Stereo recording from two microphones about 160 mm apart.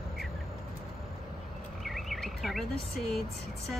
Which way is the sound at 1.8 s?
Centre (ahead or behind).